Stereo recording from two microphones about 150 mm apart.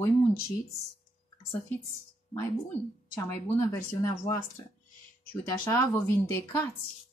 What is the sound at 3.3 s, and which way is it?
Speech, 20° left (ahead or behind).